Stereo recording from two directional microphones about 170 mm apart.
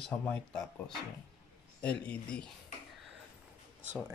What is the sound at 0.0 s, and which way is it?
A man's voice, 10° left (ahead or behind).